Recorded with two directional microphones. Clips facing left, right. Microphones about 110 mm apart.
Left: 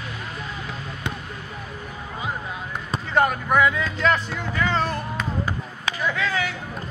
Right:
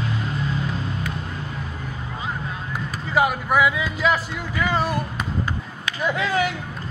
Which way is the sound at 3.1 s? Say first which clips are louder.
Even; 5° right (ahead or behind).